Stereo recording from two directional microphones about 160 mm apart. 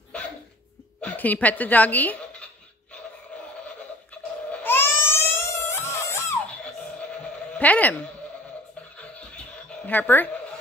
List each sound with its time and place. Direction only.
1.0 s a woman's voice: 10° left (ahead or behind)
4.5 s crying: 15° left (ahead or behind)
7.5 s a woman's voice: 10° left (ahead or behind)
9.7 s speech: 10° left (ahead or behind)